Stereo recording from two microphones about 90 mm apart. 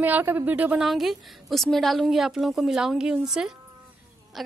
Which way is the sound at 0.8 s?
Centre (ahead or behind).